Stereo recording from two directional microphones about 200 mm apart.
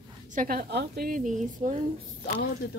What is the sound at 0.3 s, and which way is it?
A woman's voice, 45° right (ahead or behind).